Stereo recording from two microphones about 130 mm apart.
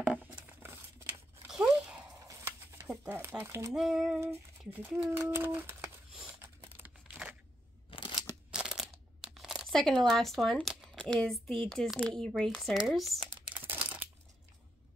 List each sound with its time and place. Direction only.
0.0 s tearing: 10° right (ahead or behind)
1.5 s a sound: 5° right (ahead or behind)
2.2 s a sound: 20° right (ahead or behind)
3.7 s speech: 5° right (ahead or behind)
4.2 s speech: 15° right (ahead or behind)
6.8 s tearing: 10° right (ahead or behind)
7.9 s scissors: 45° left (ahead or behind)
8.5 s crumpling: 5° right (ahead or behind)
11.6 s speech: 5° left (ahead or behind)
13.7 s crumpling: 15° right (ahead or behind)